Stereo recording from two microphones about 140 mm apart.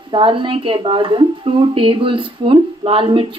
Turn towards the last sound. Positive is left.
turn(degrees=-40)  # may be behind; listen again after turning